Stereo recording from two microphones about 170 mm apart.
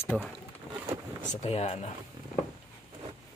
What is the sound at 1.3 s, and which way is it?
Speech, 40° left (ahead or behind).